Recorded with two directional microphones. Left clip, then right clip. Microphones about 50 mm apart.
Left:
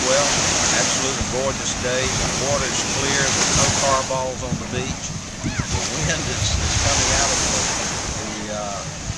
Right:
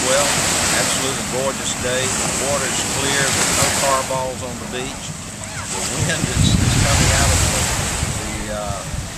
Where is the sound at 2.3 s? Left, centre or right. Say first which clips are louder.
Right 1 dB; right.